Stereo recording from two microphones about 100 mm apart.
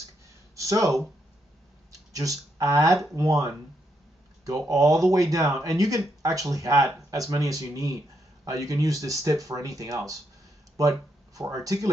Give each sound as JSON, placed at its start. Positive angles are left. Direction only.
{"t": 0.6, "sound": "speech", "side_deg": -35}
{"t": 2.1, "sound": "speech", "side_deg": -35}